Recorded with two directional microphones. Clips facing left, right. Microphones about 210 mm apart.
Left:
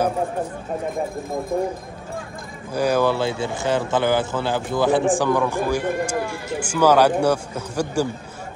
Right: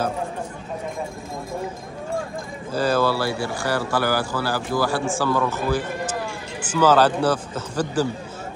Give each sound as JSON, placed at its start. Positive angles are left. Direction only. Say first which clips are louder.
{"t": 2.7, "sound": "a man's voice", "louder": "left 1 dB", "side_deg": 15}